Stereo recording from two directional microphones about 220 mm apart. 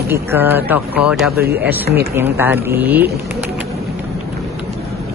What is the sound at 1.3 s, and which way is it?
Speech, 45° right (ahead or behind).